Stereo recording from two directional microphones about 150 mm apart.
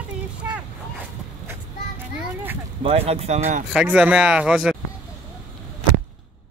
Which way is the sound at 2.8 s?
40° right (ahead or behind).